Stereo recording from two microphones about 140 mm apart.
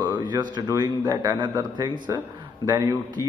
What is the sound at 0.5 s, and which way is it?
A man's voice, 30° right (ahead or behind).